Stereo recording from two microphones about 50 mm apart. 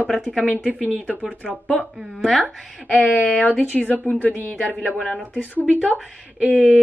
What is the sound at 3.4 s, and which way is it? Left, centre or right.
A woman's voice, left.